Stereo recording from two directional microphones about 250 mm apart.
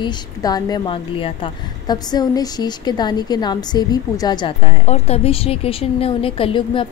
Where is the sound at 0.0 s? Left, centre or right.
Centre.